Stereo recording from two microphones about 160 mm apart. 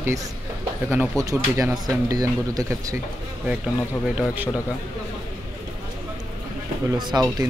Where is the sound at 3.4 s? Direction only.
5° right (ahead or behind).